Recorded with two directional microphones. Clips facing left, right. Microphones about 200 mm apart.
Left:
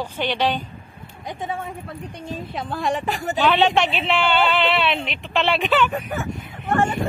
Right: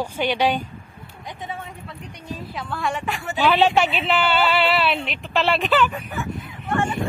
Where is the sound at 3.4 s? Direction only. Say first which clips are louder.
Right 1 dB; 5° right (ahead or behind).